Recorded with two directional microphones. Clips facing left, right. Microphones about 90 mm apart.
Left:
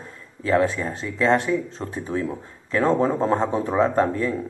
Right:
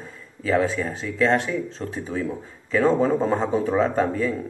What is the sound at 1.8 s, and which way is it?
Speech, 30° left (ahead or behind).